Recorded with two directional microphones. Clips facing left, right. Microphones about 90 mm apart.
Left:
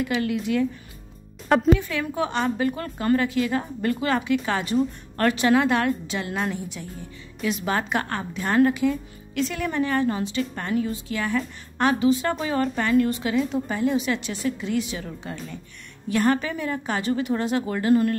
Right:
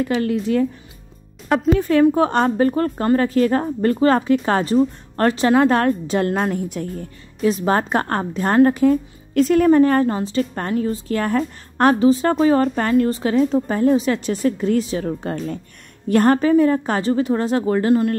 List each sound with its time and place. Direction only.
0.0 s a woman's voice: 35° right (ahead or behind)
1.8 s a woman's voice: 40° right (ahead or behind)
7.4 s a woman's voice: 40° right (ahead or behind)